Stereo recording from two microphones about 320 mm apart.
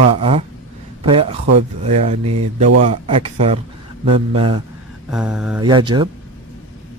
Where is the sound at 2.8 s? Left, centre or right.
Centre.